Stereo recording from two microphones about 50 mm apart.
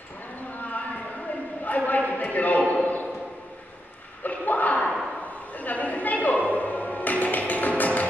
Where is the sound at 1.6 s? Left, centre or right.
Left.